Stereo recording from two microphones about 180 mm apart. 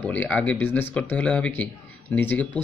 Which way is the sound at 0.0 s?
10° left (ahead or behind).